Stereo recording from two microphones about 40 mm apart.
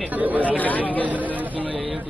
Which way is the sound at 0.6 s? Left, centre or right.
Left.